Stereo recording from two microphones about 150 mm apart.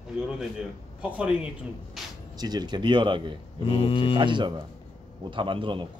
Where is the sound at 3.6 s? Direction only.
40° left (ahead or behind).